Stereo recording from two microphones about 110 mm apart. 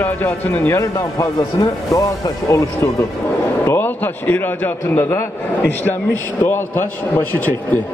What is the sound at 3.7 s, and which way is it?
A man's voice, 15° left (ahead or behind).